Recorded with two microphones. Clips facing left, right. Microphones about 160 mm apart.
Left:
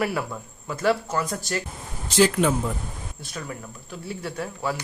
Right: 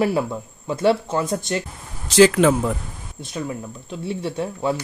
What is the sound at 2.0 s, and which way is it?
Speech, 90° right.